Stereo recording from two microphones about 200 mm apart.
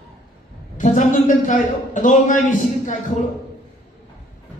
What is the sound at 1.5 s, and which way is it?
Speech, 40° left (ahead or behind).